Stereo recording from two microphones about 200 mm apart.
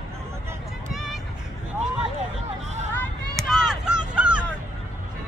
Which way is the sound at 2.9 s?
10° left (ahead or behind).